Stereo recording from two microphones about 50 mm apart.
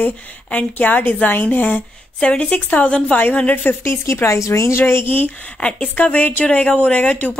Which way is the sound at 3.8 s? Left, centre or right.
Left.